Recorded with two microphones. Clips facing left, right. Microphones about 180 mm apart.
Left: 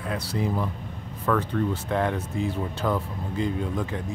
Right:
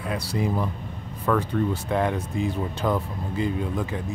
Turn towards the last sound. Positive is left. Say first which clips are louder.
# right 1 dB
turn(degrees=-5)  # may be behind; listen again after turning